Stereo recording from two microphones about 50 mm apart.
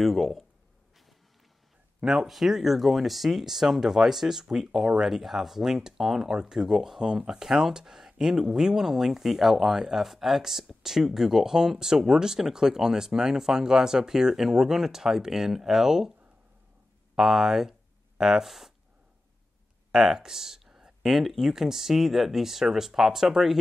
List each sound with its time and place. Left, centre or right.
0.0 s speech: centre
2.0 s speech: centre
17.1 s speech: centre
19.9 s speech: centre